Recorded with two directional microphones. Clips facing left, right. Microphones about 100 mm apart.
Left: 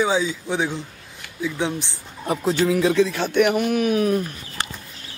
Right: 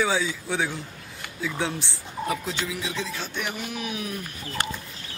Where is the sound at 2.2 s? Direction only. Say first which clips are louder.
Left 9 dB; 40° left (ahead or behind).